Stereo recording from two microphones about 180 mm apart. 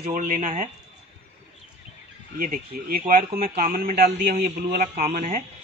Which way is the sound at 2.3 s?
50° right (ahead or behind).